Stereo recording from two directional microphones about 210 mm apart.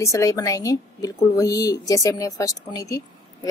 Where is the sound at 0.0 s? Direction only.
15° left (ahead or behind).